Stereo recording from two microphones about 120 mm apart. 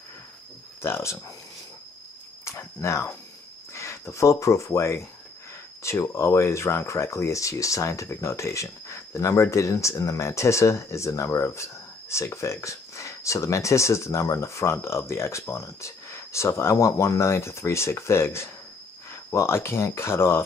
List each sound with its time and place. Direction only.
0.8 s speech: 20° left (ahead or behind)
2.4 s speech: 25° left (ahead or behind)